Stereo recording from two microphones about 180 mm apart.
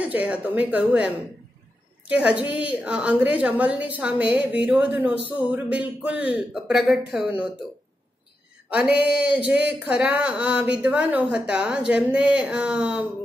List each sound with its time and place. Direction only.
0.0 s a woman's voice: 5° right (ahead or behind)
8.6 s a woman's voice: 5° right (ahead or behind)